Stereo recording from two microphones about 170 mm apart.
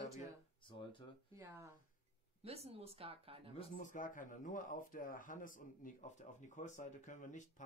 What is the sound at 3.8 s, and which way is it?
Speech, 50° left (ahead or behind).